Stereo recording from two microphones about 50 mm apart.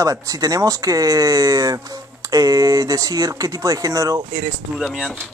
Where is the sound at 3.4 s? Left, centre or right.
Right.